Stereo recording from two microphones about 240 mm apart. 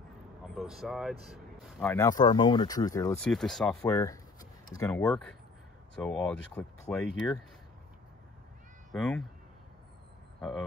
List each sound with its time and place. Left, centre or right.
0.6 s speech: centre
1.8 s speech: centre
3.2 s speech: centre
3.8 s speech: centre
8.9 s speech: centre